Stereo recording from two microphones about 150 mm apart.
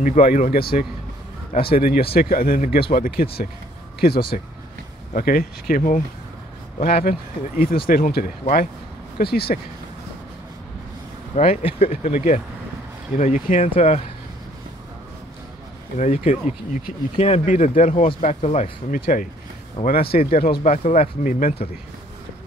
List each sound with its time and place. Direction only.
0.3 s speech: 75° left (ahead or behind)
5.1 s speech: 80° left; by 6.0 s 65° left (ahead or behind)
6.8 s speech: 85° left
9.2 s speech: 90° left
11.3 s speech: 45° left (ahead or behind)
13.2 s speech: 55° left (ahead or behind)
16.0 s speech: 50° left (ahead or behind)
18.9 s speech: 80° left
20.6 s speech: 50° left (ahead or behind); by 21.6 s 65° left (ahead or behind)